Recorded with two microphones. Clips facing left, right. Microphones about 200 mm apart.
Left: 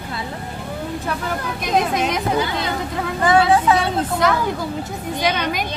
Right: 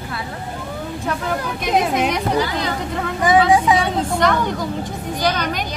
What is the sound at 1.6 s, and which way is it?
Speech, centre (ahead or behind).